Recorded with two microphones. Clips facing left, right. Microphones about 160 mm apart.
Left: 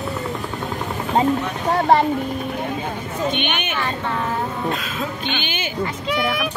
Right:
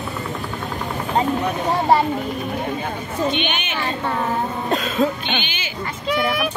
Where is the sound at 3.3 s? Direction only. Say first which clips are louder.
Left 2 dB; 55° left (ahead or behind).